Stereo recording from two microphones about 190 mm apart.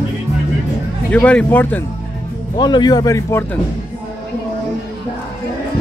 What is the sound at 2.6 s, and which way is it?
Speech, 20° left (ahead or behind).